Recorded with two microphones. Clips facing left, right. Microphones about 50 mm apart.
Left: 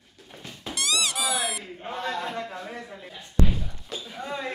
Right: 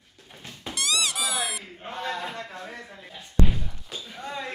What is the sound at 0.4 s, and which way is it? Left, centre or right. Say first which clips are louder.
Squeak: even; centre.